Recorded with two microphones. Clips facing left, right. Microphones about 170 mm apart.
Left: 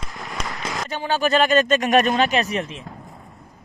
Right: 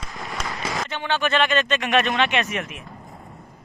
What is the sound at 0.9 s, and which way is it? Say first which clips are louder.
Speech: left 4 dB; 40° left (ahead or behind).